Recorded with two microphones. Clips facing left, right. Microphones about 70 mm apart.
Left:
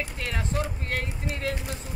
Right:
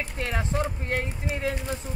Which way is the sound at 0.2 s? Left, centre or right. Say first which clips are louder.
Right 4 dB; right.